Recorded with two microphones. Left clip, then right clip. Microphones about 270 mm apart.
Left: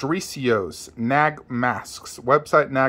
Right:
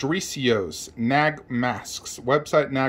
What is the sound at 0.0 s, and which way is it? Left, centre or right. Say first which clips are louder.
Speech: even; centre.